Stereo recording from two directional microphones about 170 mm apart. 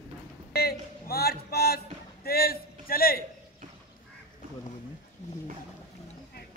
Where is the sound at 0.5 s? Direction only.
70° left (ahead or behind).